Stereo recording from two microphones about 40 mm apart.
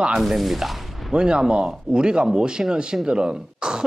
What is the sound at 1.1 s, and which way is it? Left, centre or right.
Speech, right.